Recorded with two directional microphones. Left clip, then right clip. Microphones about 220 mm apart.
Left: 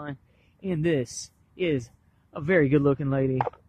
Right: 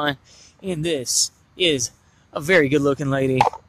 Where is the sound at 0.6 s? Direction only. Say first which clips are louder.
Right 2 dB; centre (ahead or behind).